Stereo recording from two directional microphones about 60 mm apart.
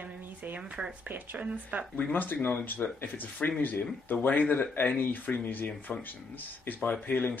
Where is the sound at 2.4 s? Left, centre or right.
Left.